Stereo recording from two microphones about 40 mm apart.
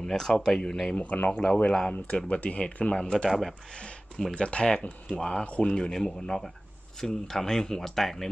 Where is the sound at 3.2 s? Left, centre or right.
Centre.